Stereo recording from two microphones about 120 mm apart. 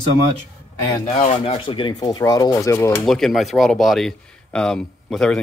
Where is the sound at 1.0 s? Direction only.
75° left (ahead or behind).